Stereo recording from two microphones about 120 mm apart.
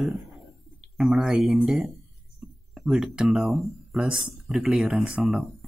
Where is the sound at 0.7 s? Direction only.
5° right (ahead or behind).